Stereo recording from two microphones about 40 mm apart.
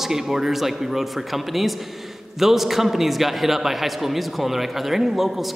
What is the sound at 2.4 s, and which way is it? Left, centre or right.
A man's voice, centre.